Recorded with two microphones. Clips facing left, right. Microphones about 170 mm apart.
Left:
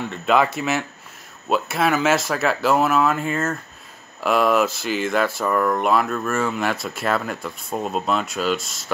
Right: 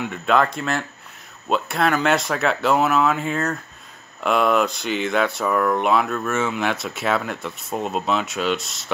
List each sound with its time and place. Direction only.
0.3 s speech: 5° left (ahead or behind)